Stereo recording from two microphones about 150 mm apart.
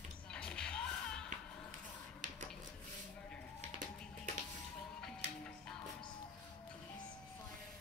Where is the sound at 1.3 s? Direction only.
60° right (ahead or behind).